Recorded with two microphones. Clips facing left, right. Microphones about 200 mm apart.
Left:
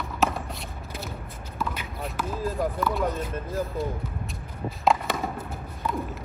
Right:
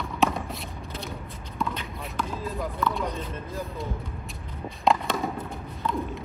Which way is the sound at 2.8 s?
5° left (ahead or behind).